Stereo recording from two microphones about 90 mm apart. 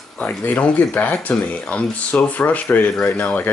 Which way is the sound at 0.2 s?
20° left (ahead or behind).